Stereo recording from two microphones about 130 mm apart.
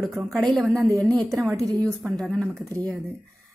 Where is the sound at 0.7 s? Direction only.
20° right (ahead or behind).